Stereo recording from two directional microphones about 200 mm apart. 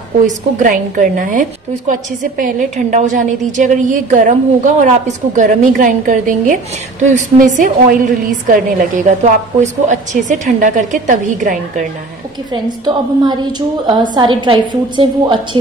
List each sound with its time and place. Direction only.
0.6 s a woman's voice: 40° right (ahead or behind)
12.6 s a woman's voice: 20° right (ahead or behind)